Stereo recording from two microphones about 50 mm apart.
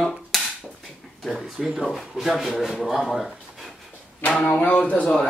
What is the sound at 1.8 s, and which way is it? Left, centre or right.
Speech, centre.